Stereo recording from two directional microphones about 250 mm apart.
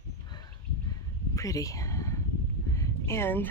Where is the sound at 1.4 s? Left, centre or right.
Centre.